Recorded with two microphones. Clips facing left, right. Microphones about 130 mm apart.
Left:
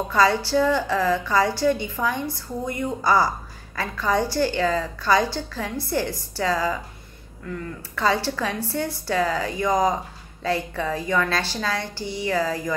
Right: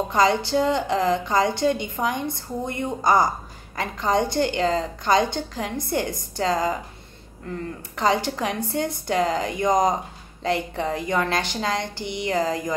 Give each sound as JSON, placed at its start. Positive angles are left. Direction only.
{"t": 0.1, "sound": "a woman's voice", "side_deg": -20}
{"t": 7.9, "sound": "a woman's voice", "side_deg": -20}